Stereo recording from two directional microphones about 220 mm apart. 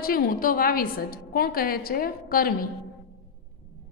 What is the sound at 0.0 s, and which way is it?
A woman's voice, 40° left (ahead or behind).